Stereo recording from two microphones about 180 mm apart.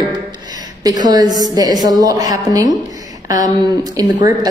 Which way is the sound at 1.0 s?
20° right (ahead or behind).